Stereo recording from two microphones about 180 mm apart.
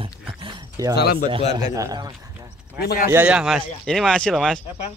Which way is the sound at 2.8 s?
55° left (ahead or behind).